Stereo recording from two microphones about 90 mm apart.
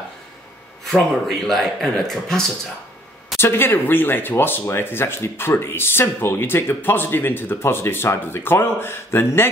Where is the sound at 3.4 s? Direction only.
25° left (ahead or behind).